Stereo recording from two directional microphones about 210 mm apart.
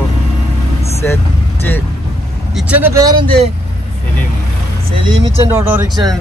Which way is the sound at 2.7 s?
10° right (ahead or behind).